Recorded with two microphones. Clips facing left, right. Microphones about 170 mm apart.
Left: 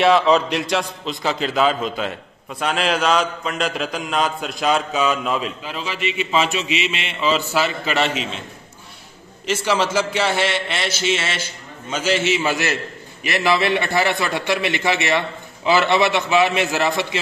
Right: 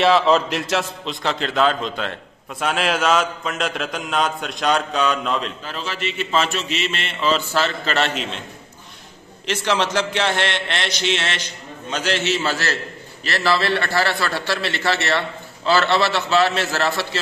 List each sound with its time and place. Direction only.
0.0 s a man's voice: centre (ahead or behind)
9.5 s a man's voice: 10° left (ahead or behind)